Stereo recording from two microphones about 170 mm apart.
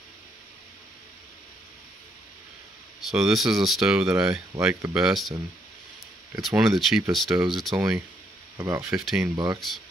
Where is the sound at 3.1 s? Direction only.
Centre (ahead or behind).